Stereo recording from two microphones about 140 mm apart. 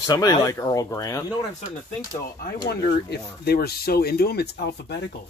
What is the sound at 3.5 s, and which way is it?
Speech, 90° left.